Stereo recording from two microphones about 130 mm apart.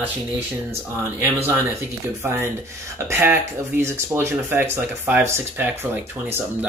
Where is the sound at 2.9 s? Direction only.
20° right (ahead or behind).